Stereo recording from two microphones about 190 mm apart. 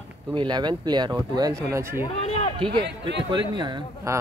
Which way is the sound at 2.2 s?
35° left (ahead or behind).